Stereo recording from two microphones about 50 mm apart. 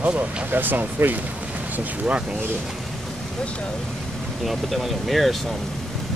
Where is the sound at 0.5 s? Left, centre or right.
Right.